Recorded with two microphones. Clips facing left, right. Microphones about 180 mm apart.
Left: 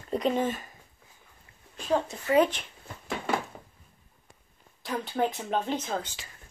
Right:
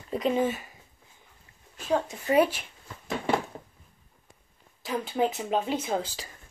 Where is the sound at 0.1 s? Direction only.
5° right (ahead or behind).